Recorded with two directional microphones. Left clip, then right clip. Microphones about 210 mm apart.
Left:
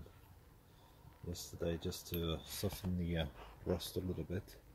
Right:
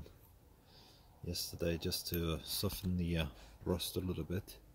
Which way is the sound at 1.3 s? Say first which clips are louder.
Right 3 dB; 25° right (ahead or behind).